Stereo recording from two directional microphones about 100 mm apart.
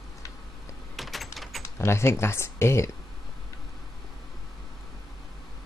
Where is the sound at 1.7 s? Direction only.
25° left (ahead or behind).